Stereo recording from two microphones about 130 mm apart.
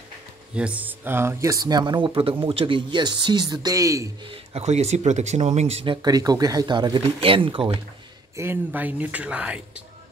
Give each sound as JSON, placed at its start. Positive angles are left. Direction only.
{"t": 0.6, "sound": "speech", "side_deg": -10}
{"t": 4.2, "sound": "speech", "side_deg": -50}
{"t": 6.0, "sound": "speech", "side_deg": -30}
{"t": 8.4, "sound": "speech", "side_deg": -15}